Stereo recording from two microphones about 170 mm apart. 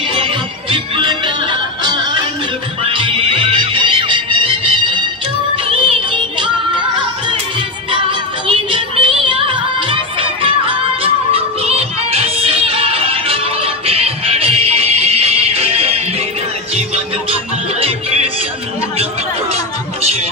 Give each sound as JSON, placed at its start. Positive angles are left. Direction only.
{"t": 0.1, "sound": "music", "side_deg": -30}
{"t": 7.9, "sound": "music", "side_deg": -30}
{"t": 17.7, "sound": "music", "side_deg": -35}
{"t": 19.5, "sound": "music", "side_deg": -35}